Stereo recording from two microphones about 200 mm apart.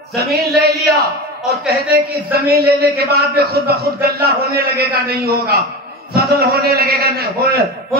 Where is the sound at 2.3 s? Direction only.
50° right (ahead or behind).